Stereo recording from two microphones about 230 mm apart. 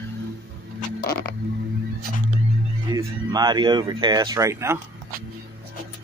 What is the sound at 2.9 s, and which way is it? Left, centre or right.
Speech, centre.